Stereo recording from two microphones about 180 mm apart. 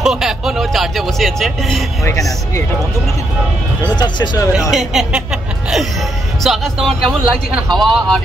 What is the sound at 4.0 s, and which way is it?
Speech, 25° left (ahead or behind).